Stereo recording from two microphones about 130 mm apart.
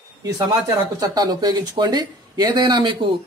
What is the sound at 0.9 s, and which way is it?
Speech, 30° right (ahead or behind).